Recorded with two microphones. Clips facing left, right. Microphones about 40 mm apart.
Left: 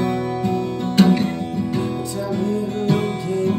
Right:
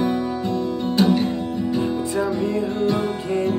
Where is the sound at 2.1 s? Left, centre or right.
Right.